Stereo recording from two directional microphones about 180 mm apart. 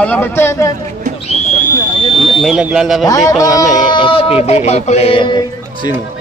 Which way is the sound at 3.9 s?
25° left (ahead or behind).